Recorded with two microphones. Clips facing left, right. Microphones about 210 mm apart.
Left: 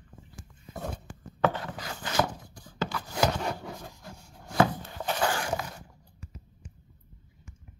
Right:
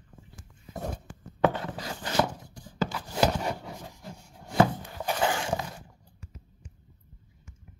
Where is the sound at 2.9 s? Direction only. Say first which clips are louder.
Right 1 dB; 15° right (ahead or behind).